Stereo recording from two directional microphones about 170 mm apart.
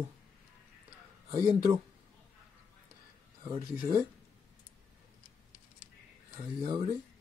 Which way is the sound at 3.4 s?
25° right (ahead or behind).